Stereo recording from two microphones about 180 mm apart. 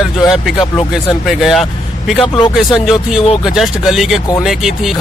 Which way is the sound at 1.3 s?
Centre (ahead or behind).